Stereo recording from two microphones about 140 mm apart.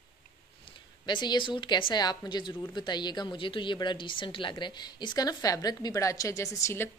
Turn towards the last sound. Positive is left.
turn(degrees=20)  # may be behind; listen again after turning